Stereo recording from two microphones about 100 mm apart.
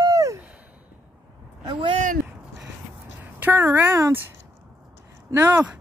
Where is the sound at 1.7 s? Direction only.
55° right (ahead or behind).